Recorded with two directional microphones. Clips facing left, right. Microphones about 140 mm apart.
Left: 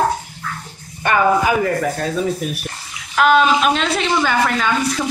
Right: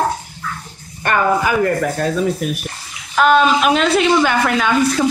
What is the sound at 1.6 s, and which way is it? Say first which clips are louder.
A man's voice: right 2 dB; centre (ahead or behind).